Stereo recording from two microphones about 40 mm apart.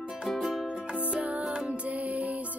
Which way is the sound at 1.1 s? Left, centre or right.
Right.